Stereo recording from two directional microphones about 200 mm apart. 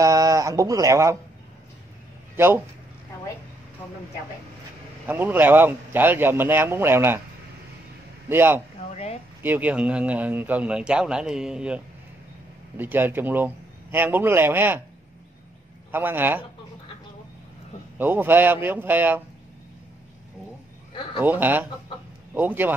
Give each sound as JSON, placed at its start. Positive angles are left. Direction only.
{"t": 0.0, "sound": "speech", "side_deg": -15}
{"t": 2.3, "sound": "speech", "side_deg": -10}
{"t": 5.0, "sound": "a man's voice", "side_deg": -10}
{"t": 8.3, "sound": "a man's voice", "side_deg": -10}
{"t": 8.9, "sound": "speech", "side_deg": 30}
{"t": 9.4, "sound": "a man's voice", "side_deg": -10}
{"t": 15.9, "sound": "a man's voice", "side_deg": -10}
{"t": 17.9, "sound": "a man's voice", "side_deg": -10}
{"t": 21.2, "sound": "a man's voice", "side_deg": -10}